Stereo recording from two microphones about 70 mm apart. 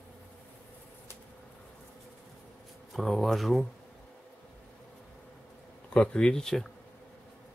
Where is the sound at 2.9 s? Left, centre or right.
Centre.